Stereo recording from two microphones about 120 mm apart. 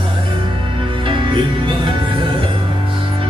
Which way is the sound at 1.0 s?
45° right (ahead or behind).